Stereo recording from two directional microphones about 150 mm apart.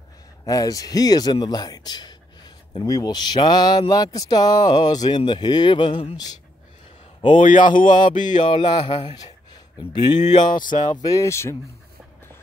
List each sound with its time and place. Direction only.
0.5 s speech: 25° left (ahead or behind)
7.3 s speech: 60° left (ahead or behind)
8.5 s speech: 35° left (ahead or behind)
10.4 s speech: 60° left (ahead or behind)
11.0 s speech: 20° left (ahead or behind)